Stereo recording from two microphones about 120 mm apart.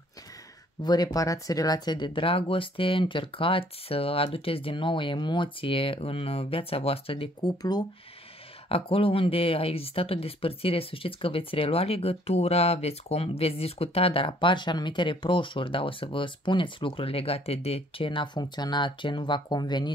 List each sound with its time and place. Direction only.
0.8 s speech: 35° left (ahead or behind); by 7.2 s 50° left (ahead or behind)
7.4 s speech: 35° left (ahead or behind)
8.6 s speech: 50° left (ahead or behind)